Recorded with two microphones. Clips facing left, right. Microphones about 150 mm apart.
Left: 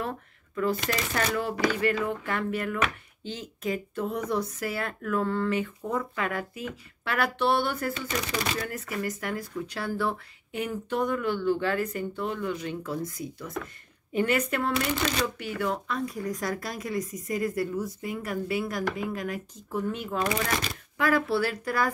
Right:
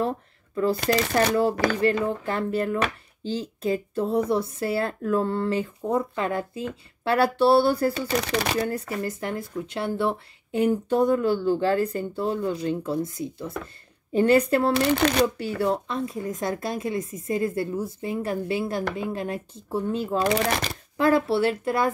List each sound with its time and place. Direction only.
0.6 s speech: 30° right (ahead or behind)
20.3 s speech: 70° right (ahead or behind)
21.0 s speech: 25° right (ahead or behind)